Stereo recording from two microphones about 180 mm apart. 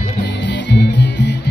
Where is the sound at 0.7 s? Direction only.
70° left (ahead or behind).